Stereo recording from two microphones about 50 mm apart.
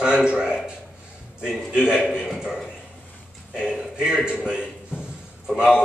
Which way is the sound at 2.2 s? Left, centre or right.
Centre.